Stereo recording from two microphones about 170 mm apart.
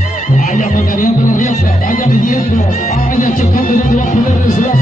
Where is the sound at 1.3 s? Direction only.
50° left (ahead or behind).